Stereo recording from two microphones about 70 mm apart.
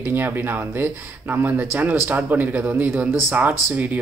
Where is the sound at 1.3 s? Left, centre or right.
Right.